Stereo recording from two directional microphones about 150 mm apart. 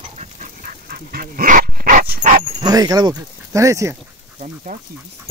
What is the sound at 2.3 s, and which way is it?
Dog, 50° right (ahead or behind).